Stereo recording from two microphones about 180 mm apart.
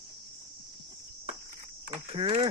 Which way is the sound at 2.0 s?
35° right (ahead or behind).